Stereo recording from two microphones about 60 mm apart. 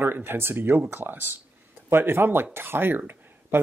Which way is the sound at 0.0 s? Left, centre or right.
Right.